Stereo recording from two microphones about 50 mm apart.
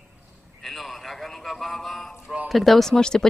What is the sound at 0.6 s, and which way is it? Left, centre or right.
A man's voice, centre.